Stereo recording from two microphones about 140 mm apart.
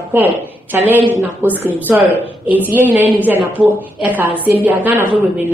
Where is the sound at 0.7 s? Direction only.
15° right (ahead or behind).